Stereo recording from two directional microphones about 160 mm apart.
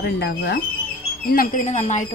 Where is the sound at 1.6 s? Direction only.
45° left (ahead or behind).